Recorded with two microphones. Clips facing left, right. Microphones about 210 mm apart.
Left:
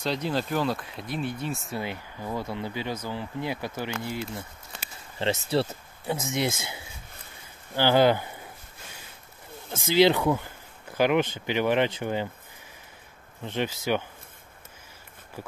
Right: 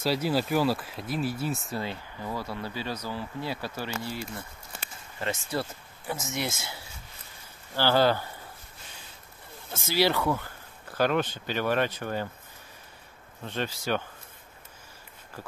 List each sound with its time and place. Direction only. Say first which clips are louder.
0.0 s speech: right 2 dB; 5° right (ahead or behind)
1.8 s speech: left 1 dB; 15° left (ahead or behind)
6.3 s speech: left 5 dB; 20° left (ahead or behind)
9.8 s speech: left 5 dB; 20° left (ahead or behind)
13.4 s speech: left 3 dB; 20° left (ahead or behind)